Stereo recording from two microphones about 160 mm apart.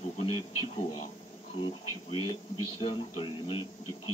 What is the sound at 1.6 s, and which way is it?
Speech, 30° left (ahead or behind).